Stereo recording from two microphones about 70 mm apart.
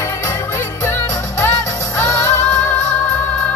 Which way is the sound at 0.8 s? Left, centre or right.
Left.